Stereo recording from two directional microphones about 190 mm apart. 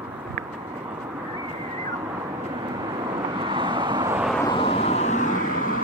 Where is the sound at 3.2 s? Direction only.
25° right (ahead or behind).